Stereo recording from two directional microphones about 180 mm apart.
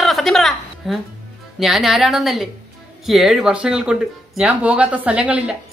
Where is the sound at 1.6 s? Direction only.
Centre (ahead or behind).